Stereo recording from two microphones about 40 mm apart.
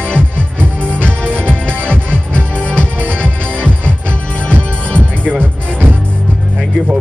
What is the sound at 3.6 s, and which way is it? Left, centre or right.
Music, left.